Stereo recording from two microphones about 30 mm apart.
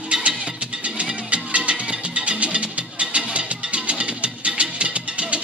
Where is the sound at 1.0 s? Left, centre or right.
Right.